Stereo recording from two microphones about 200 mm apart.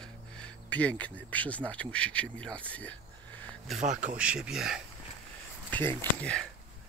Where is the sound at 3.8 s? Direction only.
40° right (ahead or behind).